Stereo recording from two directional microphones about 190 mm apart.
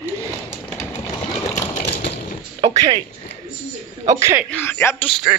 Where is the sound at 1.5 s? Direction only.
40° left (ahead or behind).